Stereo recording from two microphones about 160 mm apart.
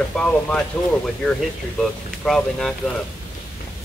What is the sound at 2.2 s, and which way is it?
Speech, 5° left (ahead or behind).